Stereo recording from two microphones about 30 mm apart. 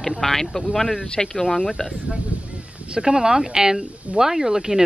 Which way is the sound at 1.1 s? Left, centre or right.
Left.